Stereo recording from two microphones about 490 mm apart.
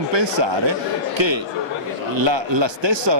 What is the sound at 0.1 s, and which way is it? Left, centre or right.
A man's voice, right.